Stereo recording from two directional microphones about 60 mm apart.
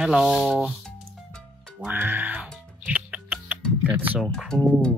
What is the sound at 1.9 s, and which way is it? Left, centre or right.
Speech, right.